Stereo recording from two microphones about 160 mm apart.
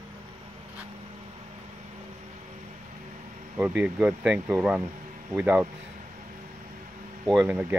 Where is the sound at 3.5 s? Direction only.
10° right (ahead or behind).